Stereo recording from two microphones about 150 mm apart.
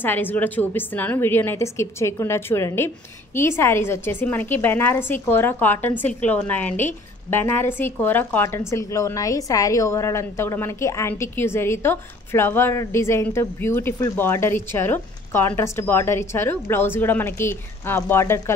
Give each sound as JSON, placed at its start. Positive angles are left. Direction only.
{"t": 0.0, "sound": "a woman's voice", "side_deg": 15}